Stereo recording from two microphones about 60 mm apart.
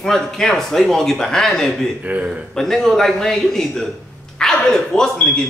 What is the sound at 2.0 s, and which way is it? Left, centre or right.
Speech, right.